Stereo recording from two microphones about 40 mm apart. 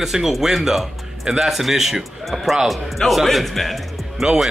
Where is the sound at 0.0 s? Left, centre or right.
Centre.